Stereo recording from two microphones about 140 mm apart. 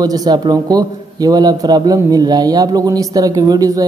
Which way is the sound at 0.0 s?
25° right (ahead or behind).